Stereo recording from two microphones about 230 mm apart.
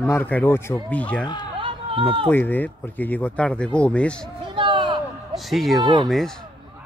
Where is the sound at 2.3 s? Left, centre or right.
Centre.